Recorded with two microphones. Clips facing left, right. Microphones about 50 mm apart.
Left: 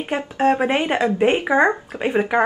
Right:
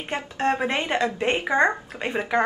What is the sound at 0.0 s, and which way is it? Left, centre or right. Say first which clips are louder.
Speech: left 6 dB; centre.